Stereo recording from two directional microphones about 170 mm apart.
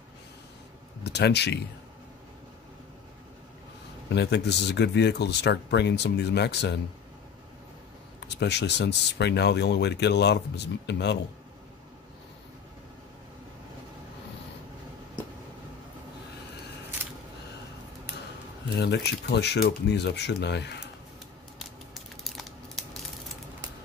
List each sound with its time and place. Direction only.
1.0 s speech: 80° left
4.1 s speech: 85° left
8.4 s speech: 85° left
18.8 s speech: 80° left
21.5 s crushing: centre (ahead or behind)